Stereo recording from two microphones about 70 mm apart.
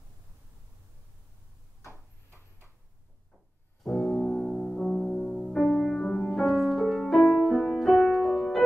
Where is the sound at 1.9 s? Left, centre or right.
Right.